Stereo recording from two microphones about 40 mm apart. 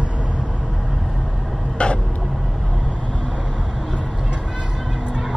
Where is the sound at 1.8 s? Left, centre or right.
Left.